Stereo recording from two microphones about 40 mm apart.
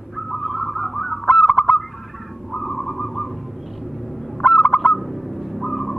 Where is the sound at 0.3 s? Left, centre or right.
Centre.